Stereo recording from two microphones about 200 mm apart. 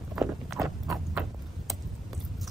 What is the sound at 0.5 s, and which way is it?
Rodents, 15° right (ahead or behind).